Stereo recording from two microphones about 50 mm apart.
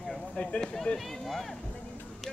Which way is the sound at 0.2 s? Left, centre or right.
Centre.